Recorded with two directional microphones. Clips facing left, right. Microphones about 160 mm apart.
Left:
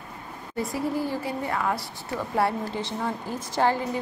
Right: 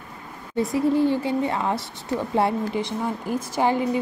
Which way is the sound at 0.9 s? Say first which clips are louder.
Right 7 dB; 25° right (ahead or behind).